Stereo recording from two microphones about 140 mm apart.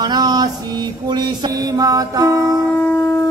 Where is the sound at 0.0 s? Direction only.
30° right (ahead or behind).